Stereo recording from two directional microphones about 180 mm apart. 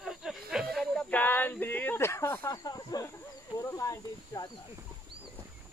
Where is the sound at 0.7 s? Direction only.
5° left (ahead or behind).